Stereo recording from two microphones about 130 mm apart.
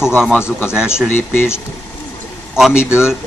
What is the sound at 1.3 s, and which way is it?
Speech, 15° left (ahead or behind).